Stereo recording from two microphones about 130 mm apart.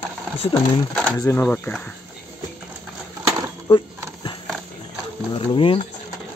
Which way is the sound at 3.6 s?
35° left (ahead or behind).